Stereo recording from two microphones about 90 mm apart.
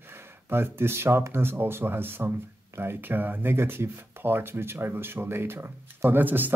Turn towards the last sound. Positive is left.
turn(degrees=-20)  # may be behind; listen again after turning